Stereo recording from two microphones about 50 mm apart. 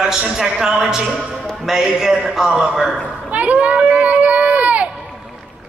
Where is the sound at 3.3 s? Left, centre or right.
Right.